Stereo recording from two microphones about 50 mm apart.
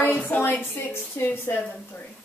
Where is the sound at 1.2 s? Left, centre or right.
Left.